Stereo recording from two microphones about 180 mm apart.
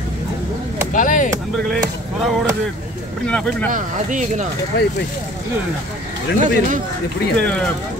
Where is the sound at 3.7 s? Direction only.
45° right (ahead or behind).